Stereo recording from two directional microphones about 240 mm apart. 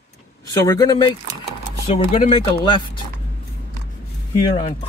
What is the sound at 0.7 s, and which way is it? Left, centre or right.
Speech, centre.